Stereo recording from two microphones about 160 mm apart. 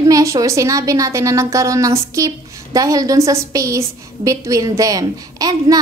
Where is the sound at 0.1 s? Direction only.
20° right (ahead or behind).